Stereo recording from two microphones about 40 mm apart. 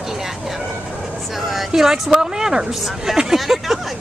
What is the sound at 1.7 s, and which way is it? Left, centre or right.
A woman's voice, centre.